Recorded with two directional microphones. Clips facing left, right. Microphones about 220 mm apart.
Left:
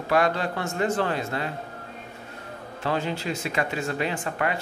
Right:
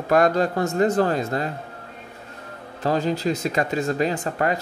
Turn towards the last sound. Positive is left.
turn(degrees=-40)  # may be behind; listen again after turning